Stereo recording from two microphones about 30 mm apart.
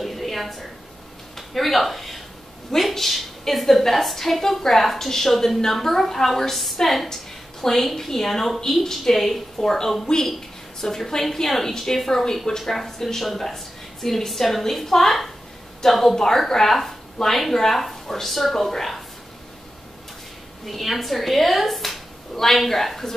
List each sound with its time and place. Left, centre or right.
0.0 s a sound: centre
1.5 s a woman's voice: centre; by 10.2 s left
10.8 s a woman's voice: centre
16.2 s a woman's voice: centre
20.6 s a woman's voice: centre